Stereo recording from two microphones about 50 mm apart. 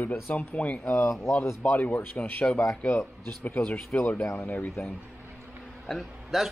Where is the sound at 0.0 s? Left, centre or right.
Left.